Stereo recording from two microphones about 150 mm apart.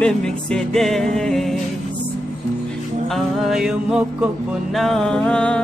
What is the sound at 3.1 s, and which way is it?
Music, centre (ahead or behind).